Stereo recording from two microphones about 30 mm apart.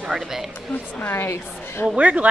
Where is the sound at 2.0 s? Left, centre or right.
Right.